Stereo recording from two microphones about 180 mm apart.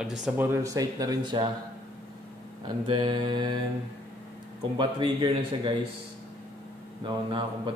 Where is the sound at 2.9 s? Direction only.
25° right (ahead or behind).